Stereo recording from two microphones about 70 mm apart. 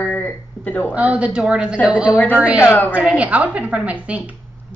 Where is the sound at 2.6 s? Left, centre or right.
Left.